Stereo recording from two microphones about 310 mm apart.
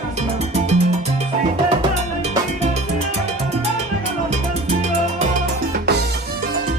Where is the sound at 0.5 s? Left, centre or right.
Centre.